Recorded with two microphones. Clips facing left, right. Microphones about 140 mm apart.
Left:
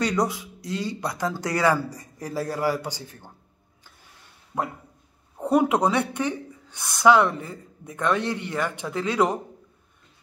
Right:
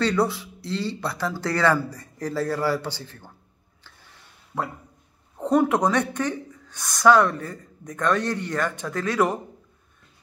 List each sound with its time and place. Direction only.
0.0 s a woman's voice: 15° left (ahead or behind)
4.5 s a woman's voice: 15° left (ahead or behind)